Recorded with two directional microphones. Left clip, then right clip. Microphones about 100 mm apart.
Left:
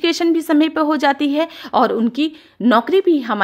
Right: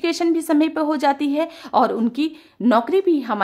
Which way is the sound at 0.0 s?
25° left (ahead or behind).